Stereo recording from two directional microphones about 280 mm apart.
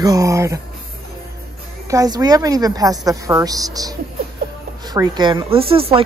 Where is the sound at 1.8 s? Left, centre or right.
Centre.